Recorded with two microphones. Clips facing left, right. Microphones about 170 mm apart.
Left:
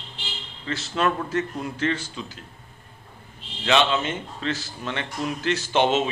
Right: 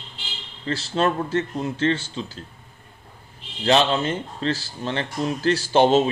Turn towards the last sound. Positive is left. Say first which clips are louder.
# right 4 dB
turn(degrees=-35)  # may be behind; listen again after turning